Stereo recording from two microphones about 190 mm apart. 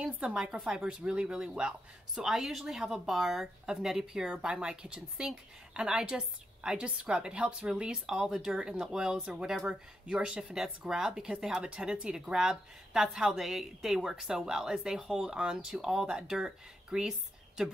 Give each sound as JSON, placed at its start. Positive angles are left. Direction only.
{"t": 0.0, "sound": "speech", "side_deg": -5}